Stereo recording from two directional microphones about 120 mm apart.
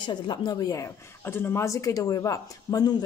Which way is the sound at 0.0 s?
40° left (ahead or behind).